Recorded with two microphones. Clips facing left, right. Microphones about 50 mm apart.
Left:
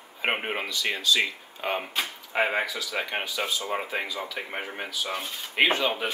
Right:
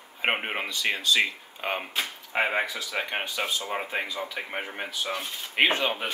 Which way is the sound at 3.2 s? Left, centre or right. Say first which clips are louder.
Even; right.